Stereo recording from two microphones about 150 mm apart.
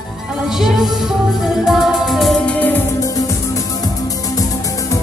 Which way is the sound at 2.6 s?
10° left (ahead or behind).